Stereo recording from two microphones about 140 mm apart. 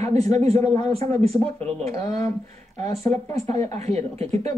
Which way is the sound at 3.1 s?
50° right (ahead or behind).